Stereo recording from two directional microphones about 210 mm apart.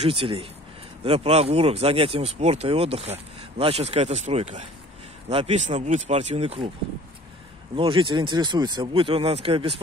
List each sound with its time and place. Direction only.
0.0 s speech: 25° right (ahead or behind)
7.7 s speech: 25° right (ahead or behind)